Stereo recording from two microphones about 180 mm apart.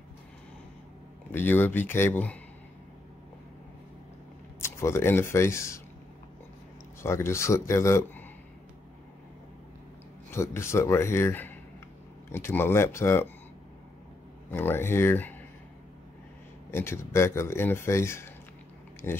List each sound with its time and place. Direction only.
1.3 s speech: 10° left (ahead or behind)
4.6 s speech: 15° left (ahead or behind)
7.0 s speech: 15° left (ahead or behind)
10.3 s speech: 15° left (ahead or behind)
14.5 s speech: 10° left (ahead or behind)
16.7 s speech: 15° left (ahead or behind)